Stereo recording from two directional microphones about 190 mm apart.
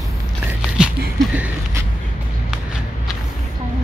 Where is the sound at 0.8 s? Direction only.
5° right (ahead or behind).